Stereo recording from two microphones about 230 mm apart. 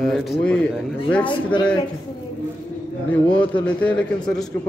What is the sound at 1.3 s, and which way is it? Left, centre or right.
Speech, left.